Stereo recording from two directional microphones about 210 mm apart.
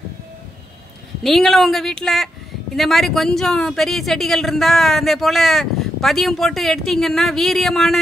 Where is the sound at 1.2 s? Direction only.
Centre (ahead or behind).